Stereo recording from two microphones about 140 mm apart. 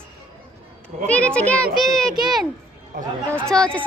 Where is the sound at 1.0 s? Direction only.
10° left (ahead or behind).